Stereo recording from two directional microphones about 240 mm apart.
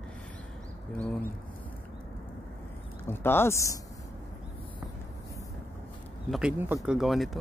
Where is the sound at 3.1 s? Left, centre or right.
Centre.